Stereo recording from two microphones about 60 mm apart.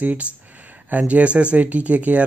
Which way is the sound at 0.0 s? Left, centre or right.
Right.